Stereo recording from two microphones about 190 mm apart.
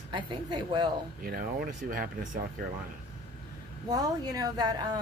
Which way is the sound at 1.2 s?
50° right (ahead or behind).